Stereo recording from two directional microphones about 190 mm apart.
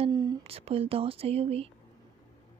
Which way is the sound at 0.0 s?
20° right (ahead or behind).